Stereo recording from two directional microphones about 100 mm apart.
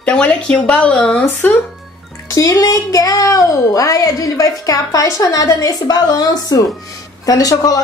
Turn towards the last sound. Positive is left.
turn(degrees=35)  # may be behind; listen again after turning